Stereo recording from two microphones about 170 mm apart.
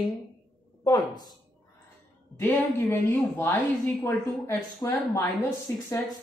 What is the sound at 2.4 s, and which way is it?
A woman's voice, 10° left (ahead or behind).